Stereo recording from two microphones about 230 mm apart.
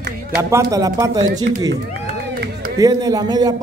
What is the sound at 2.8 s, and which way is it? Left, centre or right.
Speech, centre.